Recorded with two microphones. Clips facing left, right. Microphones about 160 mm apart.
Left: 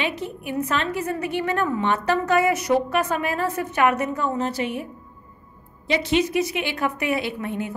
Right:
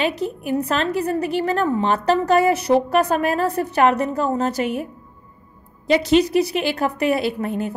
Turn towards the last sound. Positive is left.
turn(degrees=-35)  # may be behind; listen again after turning